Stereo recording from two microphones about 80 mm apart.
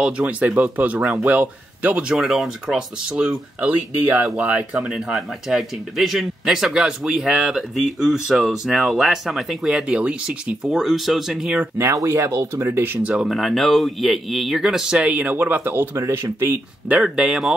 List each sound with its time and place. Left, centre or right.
0.0 s speech: centre
2.1 s speech: centre
4.7 s speech: centre
10.7 s speech: centre
11.8 s speech: right
13.1 s speech: centre; by 16.5 s right
16.9 s speech: centre